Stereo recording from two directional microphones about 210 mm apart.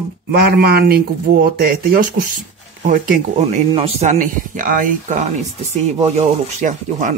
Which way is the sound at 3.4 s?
30° right (ahead or behind).